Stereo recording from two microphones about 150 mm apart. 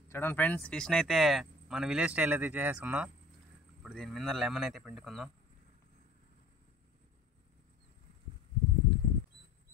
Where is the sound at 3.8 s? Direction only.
Centre (ahead or behind).